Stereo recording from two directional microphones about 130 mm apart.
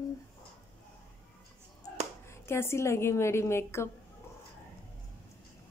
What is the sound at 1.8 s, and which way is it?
A woman's voice, 20° left (ahead or behind).